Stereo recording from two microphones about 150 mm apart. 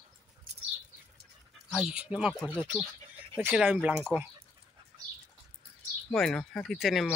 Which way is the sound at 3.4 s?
5° right (ahead or behind).